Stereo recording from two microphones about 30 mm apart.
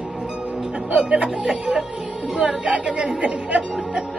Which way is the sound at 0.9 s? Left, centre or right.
Right.